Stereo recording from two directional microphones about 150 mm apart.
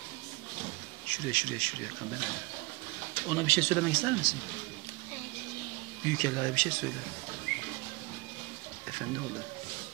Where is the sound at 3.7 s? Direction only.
5° left (ahead or behind).